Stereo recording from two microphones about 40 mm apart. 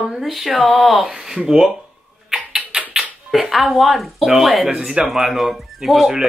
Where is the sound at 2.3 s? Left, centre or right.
Centre.